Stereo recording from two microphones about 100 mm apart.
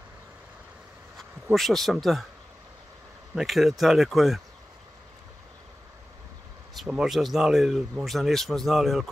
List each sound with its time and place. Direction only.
1.5 s speech: centre (ahead or behind)
3.3 s speech: 5° right (ahead or behind)
6.9 s speech: 5° right (ahead or behind)